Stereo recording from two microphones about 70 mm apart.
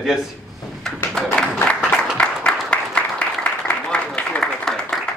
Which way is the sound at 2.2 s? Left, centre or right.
Centre.